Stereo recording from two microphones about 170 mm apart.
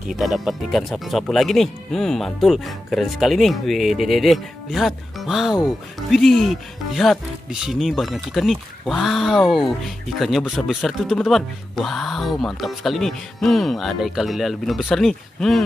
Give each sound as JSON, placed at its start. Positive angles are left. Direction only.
{"t": 0.1, "sound": "a man's voice", "side_deg": 0}